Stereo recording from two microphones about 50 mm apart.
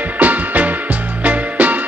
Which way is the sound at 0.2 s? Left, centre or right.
Right.